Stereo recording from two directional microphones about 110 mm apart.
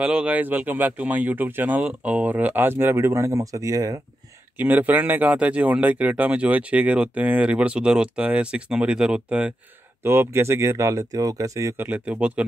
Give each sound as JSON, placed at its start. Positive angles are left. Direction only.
{"t": 0.0, "sound": "speech", "side_deg": -10}
{"t": 4.6, "sound": "speech", "side_deg": -15}
{"t": 10.0, "sound": "speech", "side_deg": -20}